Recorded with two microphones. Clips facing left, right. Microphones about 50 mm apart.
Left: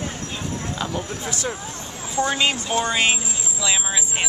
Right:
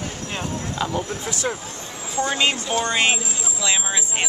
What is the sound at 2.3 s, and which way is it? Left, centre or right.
Speech, centre.